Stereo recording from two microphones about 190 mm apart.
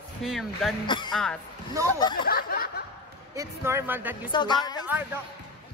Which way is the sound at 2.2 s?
50° left (ahead or behind).